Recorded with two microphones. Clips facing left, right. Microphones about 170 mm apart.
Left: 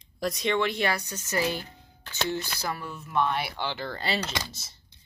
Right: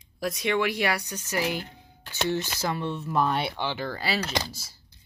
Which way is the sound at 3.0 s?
35° right (ahead or behind).